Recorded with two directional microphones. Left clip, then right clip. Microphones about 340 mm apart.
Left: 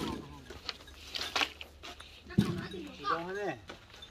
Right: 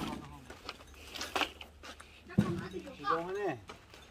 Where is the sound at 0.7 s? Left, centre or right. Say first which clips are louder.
Left 5 dB; right.